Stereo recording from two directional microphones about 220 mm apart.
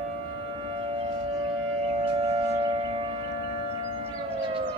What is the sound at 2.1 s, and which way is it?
Civil defense siren, 25° right (ahead or behind).